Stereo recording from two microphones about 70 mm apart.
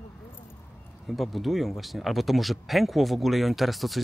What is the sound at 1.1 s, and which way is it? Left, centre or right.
Speech, centre.